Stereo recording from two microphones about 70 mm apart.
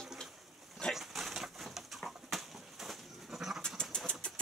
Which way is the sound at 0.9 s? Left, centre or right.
Centre.